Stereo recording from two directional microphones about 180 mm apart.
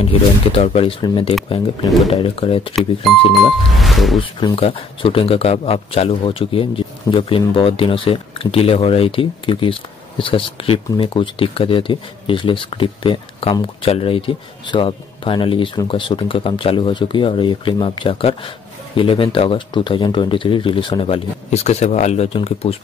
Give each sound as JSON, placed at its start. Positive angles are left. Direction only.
{"t": 0.0, "sound": "speech", "side_deg": 30}
{"t": 3.4, "sound": "speech", "side_deg": 0}
{"t": 4.2, "sound": "speech", "side_deg": 30}